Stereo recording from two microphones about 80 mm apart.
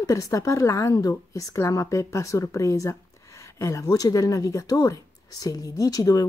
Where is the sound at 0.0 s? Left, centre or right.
Left.